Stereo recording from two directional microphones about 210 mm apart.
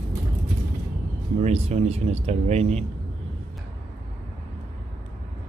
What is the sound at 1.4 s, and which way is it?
Speech, 30° right (ahead or behind).